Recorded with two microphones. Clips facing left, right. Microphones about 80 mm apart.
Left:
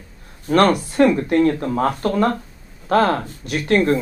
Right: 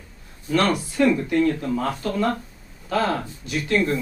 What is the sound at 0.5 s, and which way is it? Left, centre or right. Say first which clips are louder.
Speech: left 6 dB; left.